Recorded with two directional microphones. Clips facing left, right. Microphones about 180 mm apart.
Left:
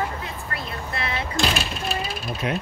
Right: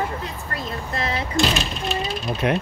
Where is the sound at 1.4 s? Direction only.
5° left (ahead or behind).